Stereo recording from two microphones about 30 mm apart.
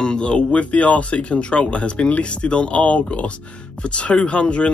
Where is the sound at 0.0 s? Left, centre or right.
Left.